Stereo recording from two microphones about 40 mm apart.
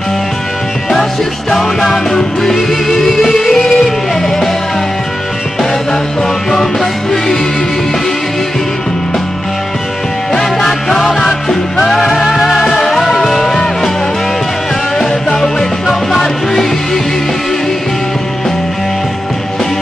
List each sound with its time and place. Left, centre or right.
1.5 s music: centre
6.5 s music: centre
10.3 s music: centre
15.0 s music: centre